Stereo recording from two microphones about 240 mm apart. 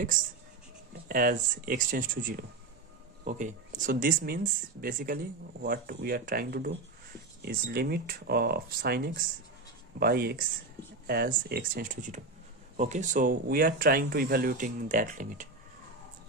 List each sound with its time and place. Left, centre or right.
0.1 s speech: right